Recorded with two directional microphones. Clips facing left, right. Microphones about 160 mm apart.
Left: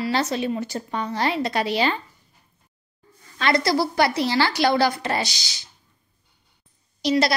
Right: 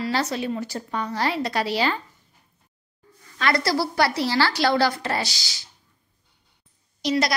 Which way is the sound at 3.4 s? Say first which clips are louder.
Left 2 dB; 20° left (ahead or behind).